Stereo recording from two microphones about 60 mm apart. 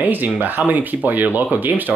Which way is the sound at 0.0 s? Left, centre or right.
Right.